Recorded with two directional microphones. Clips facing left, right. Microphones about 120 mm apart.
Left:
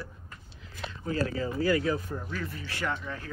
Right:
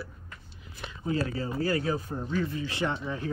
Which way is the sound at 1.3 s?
35° right (ahead or behind).